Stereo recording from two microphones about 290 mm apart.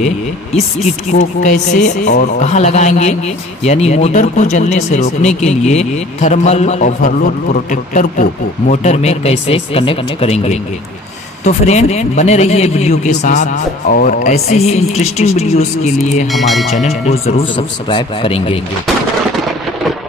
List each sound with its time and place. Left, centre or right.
0.0 s speech: left
16.3 s speech: centre
16.7 s speech: left